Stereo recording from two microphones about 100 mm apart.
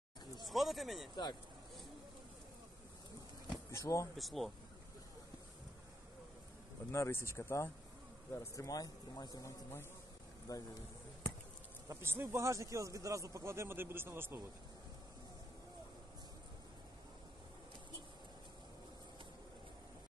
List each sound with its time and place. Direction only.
0.5 s speech: centre (ahead or behind)
3.7 s a man's voice: 30° left (ahead or behind)
4.2 s speech: centre (ahead or behind)
6.9 s a man's voice: 25° left (ahead or behind)
11.9 s speech: 25° right (ahead or behind)